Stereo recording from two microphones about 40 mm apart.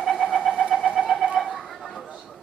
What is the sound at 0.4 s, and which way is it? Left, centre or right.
Cat, centre.